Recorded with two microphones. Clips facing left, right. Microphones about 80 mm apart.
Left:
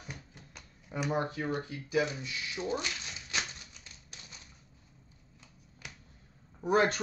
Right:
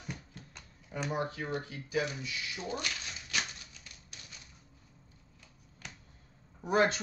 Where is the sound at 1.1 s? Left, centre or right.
Left.